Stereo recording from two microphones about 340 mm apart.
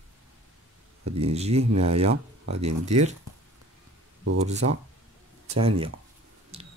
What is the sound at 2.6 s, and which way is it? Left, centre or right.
Speech, centre.